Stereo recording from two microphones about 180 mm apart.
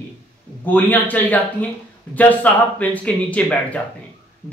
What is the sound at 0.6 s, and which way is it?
Speech, 10° left (ahead or behind).